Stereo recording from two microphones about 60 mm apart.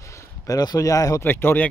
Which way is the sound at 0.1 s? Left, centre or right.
Left.